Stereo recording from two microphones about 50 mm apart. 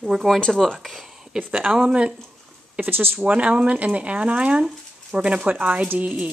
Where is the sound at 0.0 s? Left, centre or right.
Centre.